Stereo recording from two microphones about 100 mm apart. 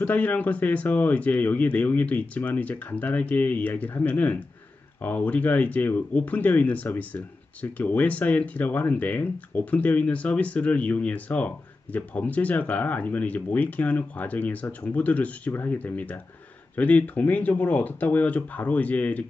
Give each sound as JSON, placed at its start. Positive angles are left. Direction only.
{"t": 0.0, "sound": "speech", "side_deg": 15}